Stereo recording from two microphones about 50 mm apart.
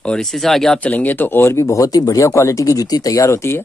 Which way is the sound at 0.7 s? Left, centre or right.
Left.